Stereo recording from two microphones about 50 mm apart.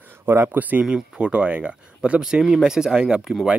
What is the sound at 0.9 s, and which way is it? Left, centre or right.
Speech, right.